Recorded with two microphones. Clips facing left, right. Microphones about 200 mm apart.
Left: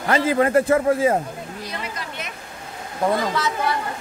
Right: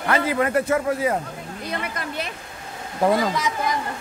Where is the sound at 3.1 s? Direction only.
10° right (ahead or behind).